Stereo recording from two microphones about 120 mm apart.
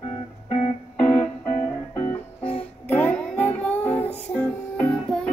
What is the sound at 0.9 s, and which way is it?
Music, 15° left (ahead or behind).